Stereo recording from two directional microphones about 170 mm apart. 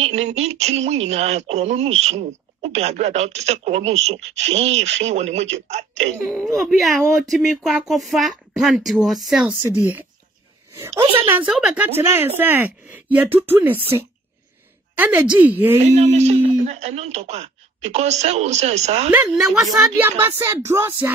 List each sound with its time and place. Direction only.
0.0 s speech: 40° right (ahead or behind)
6.4 s speech: centre (ahead or behind)
11.0 s speech: 35° right (ahead or behind)
11.2 s a woman's voice: 10° right (ahead or behind)
15.9 s speech: 40° right (ahead or behind)
19.0 s a woman's voice: 10° right (ahead or behind)